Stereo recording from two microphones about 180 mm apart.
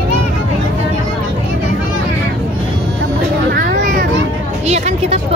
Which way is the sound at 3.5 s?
55° right (ahead or behind).